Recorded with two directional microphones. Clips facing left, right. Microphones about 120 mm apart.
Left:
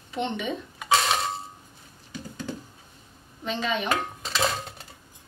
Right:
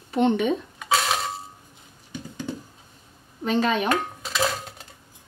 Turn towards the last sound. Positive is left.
turn(degrees=0)  # may be behind; listen again after turning